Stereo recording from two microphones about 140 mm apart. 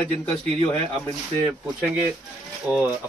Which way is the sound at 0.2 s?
10° left (ahead or behind).